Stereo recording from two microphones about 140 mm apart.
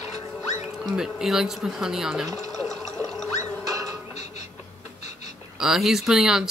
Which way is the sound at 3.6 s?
25° right (ahead or behind).